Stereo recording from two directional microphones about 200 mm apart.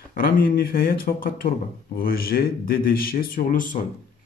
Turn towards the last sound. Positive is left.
turn(degrees=40)  # may be behind; listen again after turning